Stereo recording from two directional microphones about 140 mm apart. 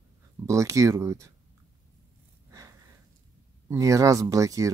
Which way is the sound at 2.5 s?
25° right (ahead or behind).